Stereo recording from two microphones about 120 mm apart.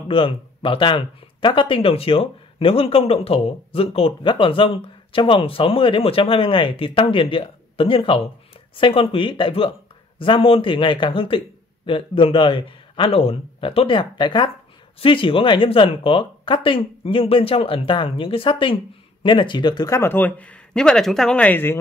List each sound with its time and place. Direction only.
0.1 s speech: 50° left (ahead or behind)
19.9 s speech: 20° left (ahead or behind)